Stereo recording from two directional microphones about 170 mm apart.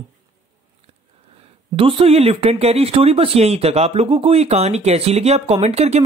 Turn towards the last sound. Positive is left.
turn(degrees=-40)  # may be behind; listen again after turning